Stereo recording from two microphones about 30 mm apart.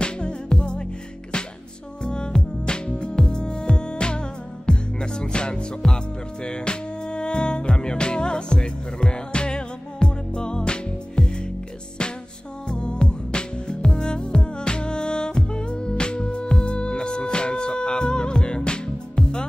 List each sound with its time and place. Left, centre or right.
0.0 s music: left
2.0 s music: left
12.6 s music: left